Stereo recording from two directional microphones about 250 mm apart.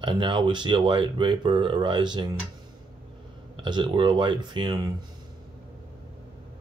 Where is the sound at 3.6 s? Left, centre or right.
Centre.